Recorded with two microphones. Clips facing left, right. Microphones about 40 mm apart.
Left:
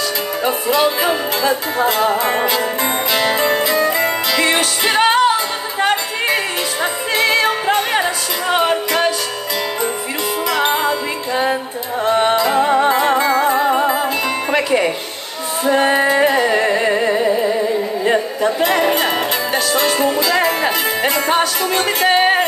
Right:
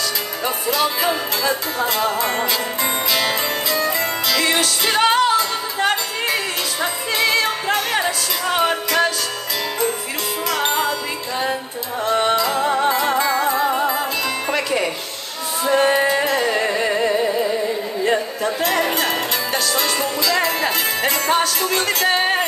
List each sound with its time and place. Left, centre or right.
0.4 s music: left
10.5 s music: centre
18.0 s speech: left